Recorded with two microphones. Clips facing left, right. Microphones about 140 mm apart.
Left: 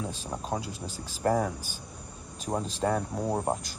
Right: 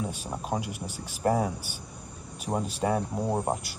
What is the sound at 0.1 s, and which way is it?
Speech, 10° right (ahead or behind).